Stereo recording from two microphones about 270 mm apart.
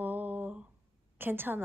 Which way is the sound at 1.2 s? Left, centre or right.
Centre.